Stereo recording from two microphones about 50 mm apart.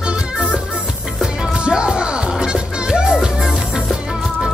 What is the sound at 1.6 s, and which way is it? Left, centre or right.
Music, centre.